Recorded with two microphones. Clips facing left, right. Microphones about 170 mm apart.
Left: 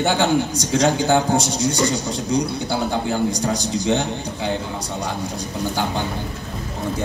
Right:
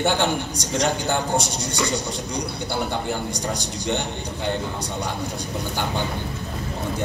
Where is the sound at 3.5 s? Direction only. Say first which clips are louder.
Left 6 dB; 90° left.